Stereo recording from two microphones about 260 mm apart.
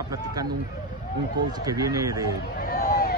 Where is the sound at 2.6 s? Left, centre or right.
Left.